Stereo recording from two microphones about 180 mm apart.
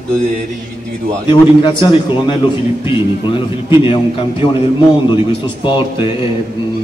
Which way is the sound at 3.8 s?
30° left (ahead or behind).